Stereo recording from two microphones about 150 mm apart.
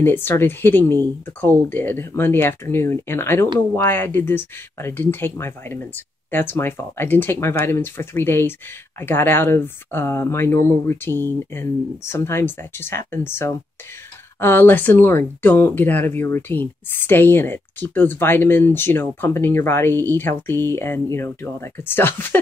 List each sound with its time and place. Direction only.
0.0 s speech: 15° left (ahead or behind)